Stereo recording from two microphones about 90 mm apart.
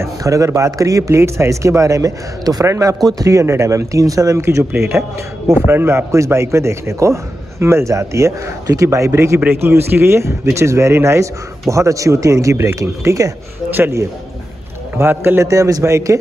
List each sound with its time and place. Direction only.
0.0 s a man's voice: 35° right (ahead or behind)